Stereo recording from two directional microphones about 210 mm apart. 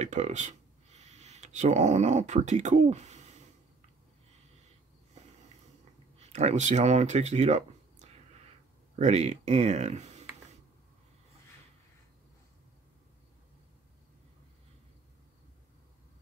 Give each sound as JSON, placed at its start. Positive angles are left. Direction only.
{"t": 0.0, "sound": "speech", "side_deg": -35}
{"t": 6.1, "sound": "speech", "side_deg": -30}